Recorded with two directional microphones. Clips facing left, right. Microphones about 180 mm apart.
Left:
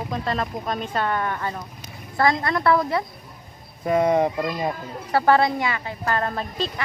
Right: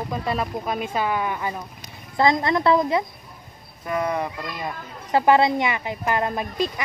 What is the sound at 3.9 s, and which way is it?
Speech, 25° left (ahead or behind).